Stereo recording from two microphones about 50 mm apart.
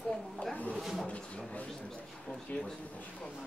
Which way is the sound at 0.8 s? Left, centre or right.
Centre.